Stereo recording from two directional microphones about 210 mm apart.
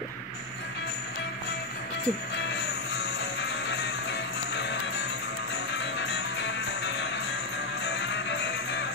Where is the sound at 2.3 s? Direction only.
55° left (ahead or behind).